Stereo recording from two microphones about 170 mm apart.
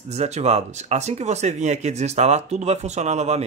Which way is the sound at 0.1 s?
40° right (ahead or behind).